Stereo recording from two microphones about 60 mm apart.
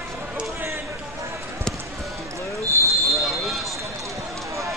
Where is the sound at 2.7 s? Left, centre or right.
Right.